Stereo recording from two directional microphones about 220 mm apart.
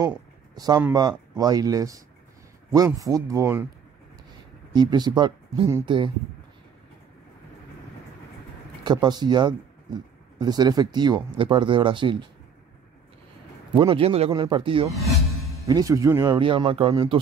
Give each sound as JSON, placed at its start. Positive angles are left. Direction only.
{"t": 0.6, "sound": "speech", "side_deg": -15}
{"t": 4.7, "sound": "speech", "side_deg": -20}
{"t": 8.8, "sound": "speech", "side_deg": -20}
{"t": 13.7, "sound": "speech", "side_deg": -25}